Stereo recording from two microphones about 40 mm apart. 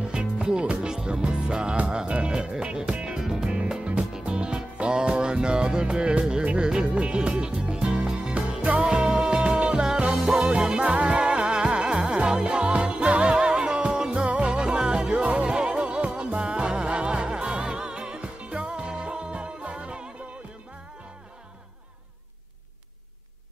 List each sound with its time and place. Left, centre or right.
0.1 s music: right
3.4 s music: right